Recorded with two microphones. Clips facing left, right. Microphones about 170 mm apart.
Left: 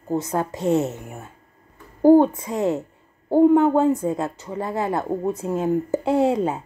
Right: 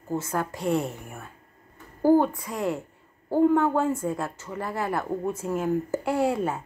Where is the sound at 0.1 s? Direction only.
20° left (ahead or behind).